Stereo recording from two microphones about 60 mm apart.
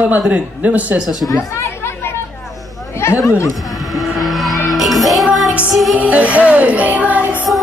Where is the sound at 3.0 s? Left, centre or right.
Left.